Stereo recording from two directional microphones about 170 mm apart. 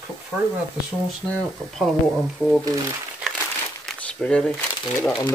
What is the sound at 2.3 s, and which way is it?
Speech, centre (ahead or behind).